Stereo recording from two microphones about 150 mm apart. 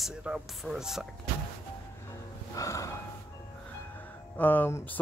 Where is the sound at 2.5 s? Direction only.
20° left (ahead or behind).